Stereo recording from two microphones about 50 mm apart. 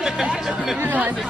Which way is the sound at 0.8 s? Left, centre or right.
Right.